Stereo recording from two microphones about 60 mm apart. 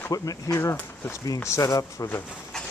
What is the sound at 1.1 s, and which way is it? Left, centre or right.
Speech, left.